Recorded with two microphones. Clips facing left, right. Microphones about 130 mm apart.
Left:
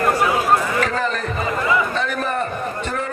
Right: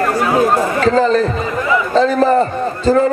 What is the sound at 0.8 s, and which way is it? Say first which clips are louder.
A man's voice: right 10 dB; 30° right (ahead or behind).